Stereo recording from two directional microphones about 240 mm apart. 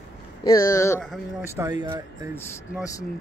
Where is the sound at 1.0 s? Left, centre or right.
Centre.